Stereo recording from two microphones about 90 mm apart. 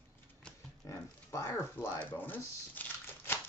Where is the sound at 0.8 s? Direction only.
35° left (ahead or behind).